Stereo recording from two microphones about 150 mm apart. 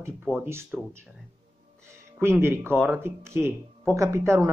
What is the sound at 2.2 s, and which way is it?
Speech, 15° right (ahead or behind).